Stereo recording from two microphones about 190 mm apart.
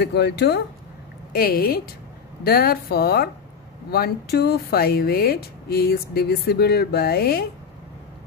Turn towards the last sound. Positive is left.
turn(degrees=55)  # may be behind; listen again after turning